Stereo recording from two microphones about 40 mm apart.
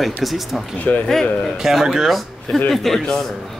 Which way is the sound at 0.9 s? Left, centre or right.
Left.